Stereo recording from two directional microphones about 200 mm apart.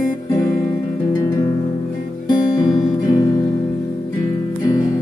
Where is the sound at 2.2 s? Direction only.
20° left (ahead or behind).